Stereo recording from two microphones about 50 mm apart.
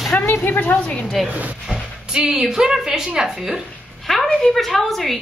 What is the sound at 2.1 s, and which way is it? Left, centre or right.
A woman's voice, centre.